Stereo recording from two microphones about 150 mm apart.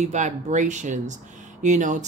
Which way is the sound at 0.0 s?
50° right (ahead or behind).